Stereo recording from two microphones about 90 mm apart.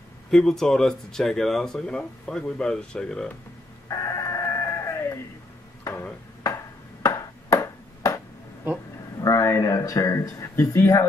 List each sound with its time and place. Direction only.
0.3 s speech: 5° left (ahead or behind)
3.9 s chicken: 40° left (ahead or behind)
6.4 s ping: 35° left (ahead or behind)
9.2 s speech: 35° left (ahead or behind)